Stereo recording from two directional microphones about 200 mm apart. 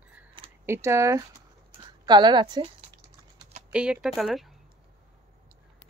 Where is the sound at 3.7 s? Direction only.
5° right (ahead or behind).